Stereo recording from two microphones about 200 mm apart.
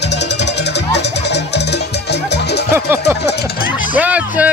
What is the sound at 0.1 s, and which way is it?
Music, 60° left (ahead or behind).